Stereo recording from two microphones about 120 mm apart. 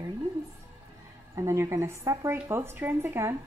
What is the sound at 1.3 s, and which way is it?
A woman's voice, 25° right (ahead or behind).